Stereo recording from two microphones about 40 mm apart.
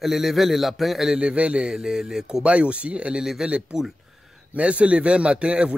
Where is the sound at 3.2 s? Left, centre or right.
Centre.